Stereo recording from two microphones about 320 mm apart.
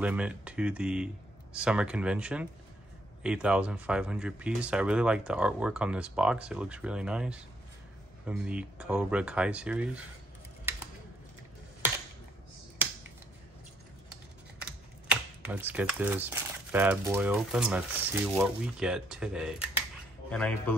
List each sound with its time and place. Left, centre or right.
0.0 s speech: centre
14.6 s speech: centre